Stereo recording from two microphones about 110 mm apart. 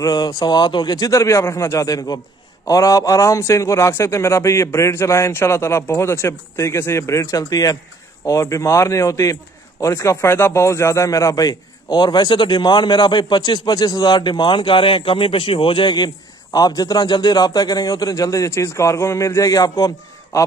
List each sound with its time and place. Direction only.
0.0 s a man's voice: 35° left (ahead or behind)